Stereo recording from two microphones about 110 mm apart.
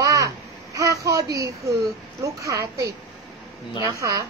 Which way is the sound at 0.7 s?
30° right (ahead or behind).